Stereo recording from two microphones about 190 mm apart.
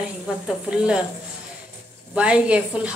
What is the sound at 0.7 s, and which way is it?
Speech, 5° right (ahead or behind).